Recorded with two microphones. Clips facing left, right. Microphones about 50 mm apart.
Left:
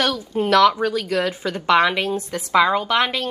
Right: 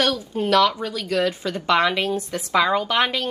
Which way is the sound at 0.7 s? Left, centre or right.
Left.